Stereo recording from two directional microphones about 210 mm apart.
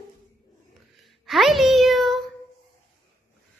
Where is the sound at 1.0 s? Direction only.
Centre (ahead or behind).